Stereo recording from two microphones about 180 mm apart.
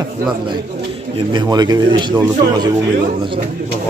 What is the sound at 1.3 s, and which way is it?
Speech, 25° right (ahead or behind).